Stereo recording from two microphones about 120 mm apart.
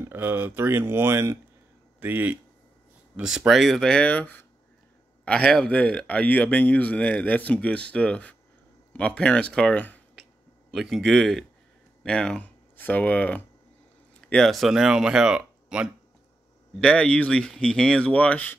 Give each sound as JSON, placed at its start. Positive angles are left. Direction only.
{"t": 0.0, "sound": "speech", "side_deg": -15}
{"t": 10.7, "sound": "speech", "side_deg": 0}
{"t": 16.8, "sound": "speech", "side_deg": 10}